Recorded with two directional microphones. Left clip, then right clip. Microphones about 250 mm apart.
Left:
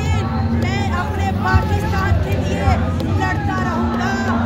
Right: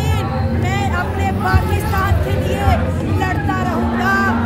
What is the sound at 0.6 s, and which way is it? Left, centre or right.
Vehicle, centre.